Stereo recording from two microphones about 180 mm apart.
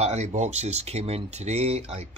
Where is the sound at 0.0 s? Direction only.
40° right (ahead or behind).